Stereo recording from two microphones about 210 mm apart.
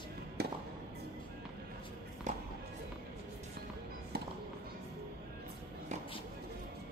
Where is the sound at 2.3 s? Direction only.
35° right (ahead or behind).